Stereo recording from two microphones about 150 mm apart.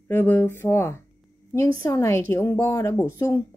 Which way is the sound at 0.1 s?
15° left (ahead or behind).